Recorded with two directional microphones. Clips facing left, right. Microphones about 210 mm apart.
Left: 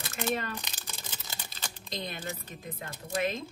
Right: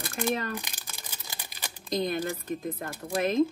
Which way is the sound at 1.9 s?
50° right (ahead or behind).